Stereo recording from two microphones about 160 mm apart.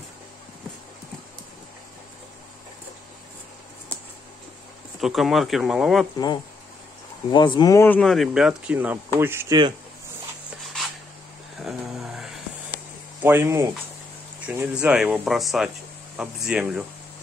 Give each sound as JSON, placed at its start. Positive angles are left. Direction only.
{"t": 5.0, "sound": "speech", "side_deg": 0}
{"t": 6.1, "sound": "speech", "side_deg": 25}
{"t": 8.0, "sound": "speech", "side_deg": 0}
{"t": 11.6, "sound": "a sound", "side_deg": 0}
{"t": 13.2, "sound": "speech", "side_deg": -15}